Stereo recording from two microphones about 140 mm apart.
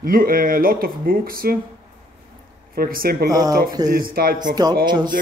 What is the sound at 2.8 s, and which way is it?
Speech, 90° right.